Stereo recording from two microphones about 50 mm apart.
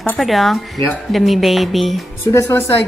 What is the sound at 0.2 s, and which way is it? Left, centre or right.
Speech, centre.